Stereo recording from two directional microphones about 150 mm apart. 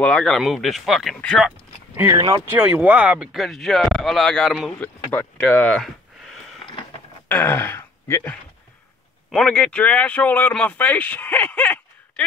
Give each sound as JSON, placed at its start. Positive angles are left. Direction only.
{"t": 0.0, "sound": "speech", "side_deg": 5}
{"t": 2.0, "sound": "speech", "side_deg": -25}
{"t": 2.5, "sound": "speech", "side_deg": -10}
{"t": 4.7, "sound": "a sound", "side_deg": 10}
{"t": 7.2, "sound": "speech", "side_deg": 15}